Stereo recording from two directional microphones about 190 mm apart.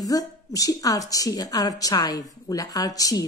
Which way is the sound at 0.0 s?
20° left (ahead or behind).